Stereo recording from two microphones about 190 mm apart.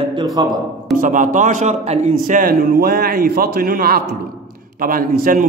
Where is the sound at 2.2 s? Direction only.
45° right (ahead or behind).